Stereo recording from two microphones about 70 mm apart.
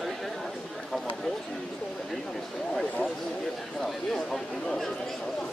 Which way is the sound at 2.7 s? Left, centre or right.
Centre.